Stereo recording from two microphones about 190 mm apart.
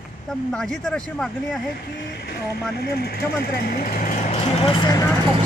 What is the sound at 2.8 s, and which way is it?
Speech, 55° left (ahead or behind).